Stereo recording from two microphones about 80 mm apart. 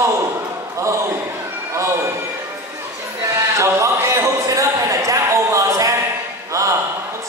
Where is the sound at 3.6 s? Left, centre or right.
Right.